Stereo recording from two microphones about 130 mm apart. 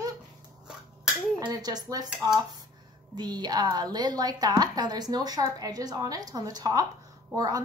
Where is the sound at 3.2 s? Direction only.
30° right (ahead or behind).